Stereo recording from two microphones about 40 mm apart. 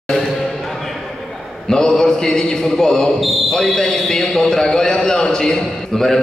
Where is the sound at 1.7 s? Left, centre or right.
Centre.